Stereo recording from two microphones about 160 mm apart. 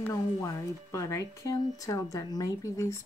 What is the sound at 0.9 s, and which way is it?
Speech, 20° left (ahead or behind).